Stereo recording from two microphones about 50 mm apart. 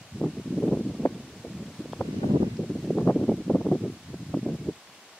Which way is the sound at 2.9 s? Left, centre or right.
Left.